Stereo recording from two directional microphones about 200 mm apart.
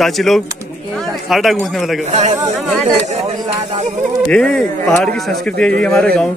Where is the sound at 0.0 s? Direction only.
Centre (ahead or behind).